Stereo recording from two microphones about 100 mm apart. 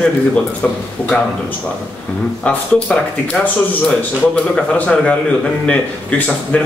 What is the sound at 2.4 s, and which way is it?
Speech, 10° left (ahead or behind).